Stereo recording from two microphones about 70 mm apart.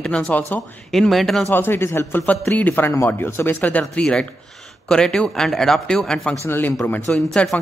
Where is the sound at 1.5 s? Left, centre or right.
Left.